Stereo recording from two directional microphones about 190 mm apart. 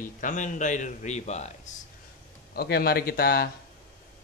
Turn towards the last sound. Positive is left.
turn(degrees=55)  # may be behind; listen again after turning